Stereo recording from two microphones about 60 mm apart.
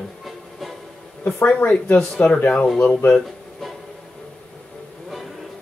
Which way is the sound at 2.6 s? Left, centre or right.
Centre.